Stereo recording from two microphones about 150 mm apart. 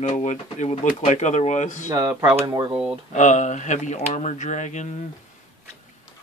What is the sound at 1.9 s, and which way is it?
Speech, 25° right (ahead or behind).